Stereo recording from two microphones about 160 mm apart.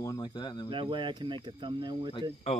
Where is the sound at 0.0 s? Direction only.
20° left (ahead or behind).